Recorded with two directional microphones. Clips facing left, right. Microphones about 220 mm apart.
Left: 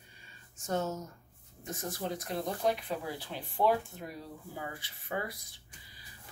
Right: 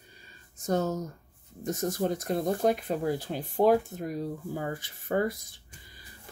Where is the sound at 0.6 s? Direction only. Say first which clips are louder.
Right 6 dB; 35° right (ahead or behind).